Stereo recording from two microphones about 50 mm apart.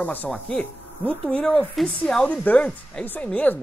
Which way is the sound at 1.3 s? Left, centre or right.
Left.